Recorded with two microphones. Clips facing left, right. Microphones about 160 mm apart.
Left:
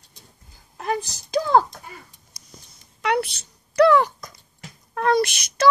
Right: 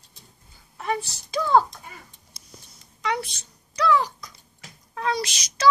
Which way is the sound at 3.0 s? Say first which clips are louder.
Left 5 dB; 65° left (ahead or behind).